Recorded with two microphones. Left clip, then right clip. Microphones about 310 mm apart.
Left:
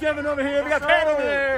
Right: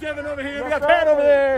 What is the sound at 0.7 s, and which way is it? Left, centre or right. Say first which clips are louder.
Speech: right 5 dB; right.